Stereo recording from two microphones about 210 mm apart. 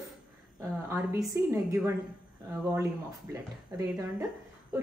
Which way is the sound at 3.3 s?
15° right (ahead or behind).